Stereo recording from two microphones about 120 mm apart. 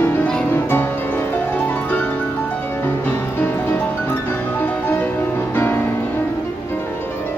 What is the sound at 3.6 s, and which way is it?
Music, 15° left (ahead or behind).